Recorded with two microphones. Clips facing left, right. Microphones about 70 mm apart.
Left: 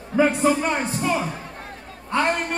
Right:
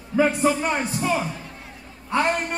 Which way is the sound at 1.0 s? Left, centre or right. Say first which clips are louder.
Even; centre.